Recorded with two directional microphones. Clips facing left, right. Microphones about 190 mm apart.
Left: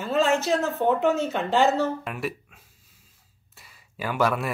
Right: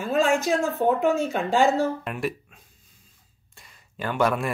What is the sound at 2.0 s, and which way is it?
Speech, centre (ahead or behind).